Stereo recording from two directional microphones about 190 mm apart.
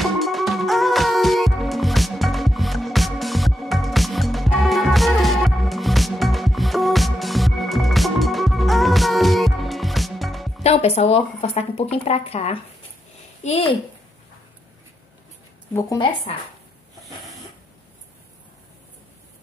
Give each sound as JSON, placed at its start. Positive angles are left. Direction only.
{"t": 0.0, "sound": "music", "side_deg": 0}
{"t": 10.6, "sound": "a child's voice", "side_deg": 35}